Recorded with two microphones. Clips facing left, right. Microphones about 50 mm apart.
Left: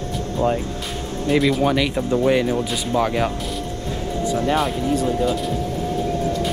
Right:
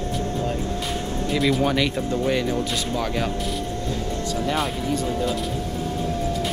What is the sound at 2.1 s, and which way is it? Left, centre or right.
Speech, centre.